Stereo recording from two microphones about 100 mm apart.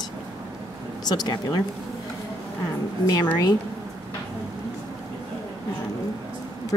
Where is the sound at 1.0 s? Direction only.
45° left (ahead or behind).